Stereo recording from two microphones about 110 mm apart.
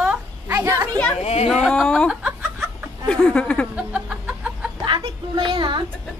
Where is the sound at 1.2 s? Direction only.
75° left (ahead or behind).